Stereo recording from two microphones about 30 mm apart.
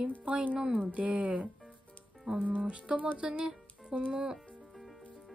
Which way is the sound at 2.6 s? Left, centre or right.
Right.